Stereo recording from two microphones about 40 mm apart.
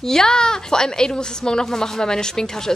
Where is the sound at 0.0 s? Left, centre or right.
Centre.